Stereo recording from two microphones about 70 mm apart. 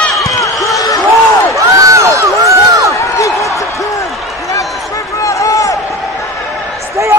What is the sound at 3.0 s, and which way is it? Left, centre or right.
Basketball bounce, left.